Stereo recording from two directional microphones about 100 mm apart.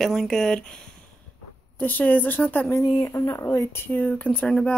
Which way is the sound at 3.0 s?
30° left (ahead or behind).